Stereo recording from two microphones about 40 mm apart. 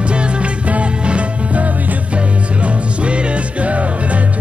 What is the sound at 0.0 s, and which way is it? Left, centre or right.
Music, right.